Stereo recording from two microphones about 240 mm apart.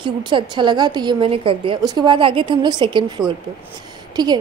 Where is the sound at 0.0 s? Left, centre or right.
Centre.